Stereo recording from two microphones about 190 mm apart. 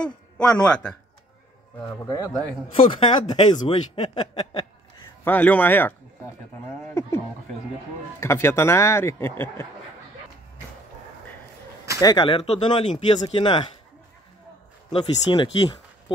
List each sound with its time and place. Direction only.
0.0 s speech: 5° left (ahead or behind)
1.8 s speech: 15° left (ahead or behind)
5.2 s speech: 10° left (ahead or behind)
8.2 s speech: 15° left (ahead or behind)
12.0 s speech: 25° left (ahead or behind)
14.9 s speech: 25° left (ahead or behind)